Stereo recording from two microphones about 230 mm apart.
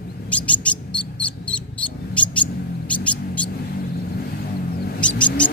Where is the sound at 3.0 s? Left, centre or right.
Centre.